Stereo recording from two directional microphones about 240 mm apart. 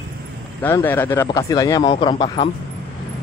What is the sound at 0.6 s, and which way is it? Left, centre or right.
Speech, centre.